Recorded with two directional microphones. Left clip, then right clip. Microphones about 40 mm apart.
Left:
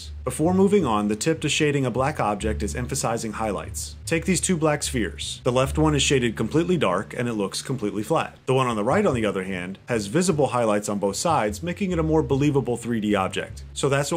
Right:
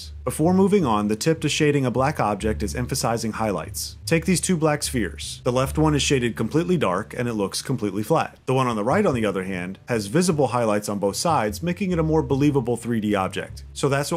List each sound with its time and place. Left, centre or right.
0.2 s speech: centre